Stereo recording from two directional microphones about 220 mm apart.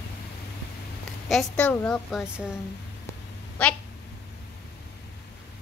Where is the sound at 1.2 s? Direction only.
5° left (ahead or behind).